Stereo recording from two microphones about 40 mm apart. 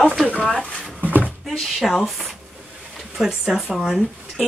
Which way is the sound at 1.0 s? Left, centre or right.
Right.